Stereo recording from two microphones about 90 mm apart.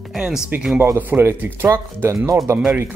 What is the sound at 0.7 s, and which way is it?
Speech, 25° right (ahead or behind).